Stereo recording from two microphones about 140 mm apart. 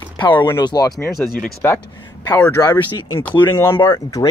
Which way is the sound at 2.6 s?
25° left (ahead or behind).